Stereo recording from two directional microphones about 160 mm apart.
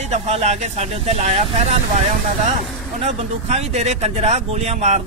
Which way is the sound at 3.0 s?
40° right (ahead or behind).